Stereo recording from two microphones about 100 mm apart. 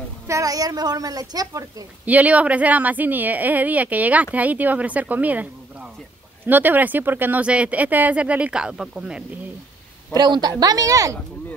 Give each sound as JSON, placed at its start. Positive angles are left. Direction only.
{"t": 0.3, "sound": "a woman's voice", "side_deg": -35}
{"t": 2.0, "sound": "a woman's voice", "side_deg": -15}
{"t": 10.1, "sound": "a woman's voice", "side_deg": -45}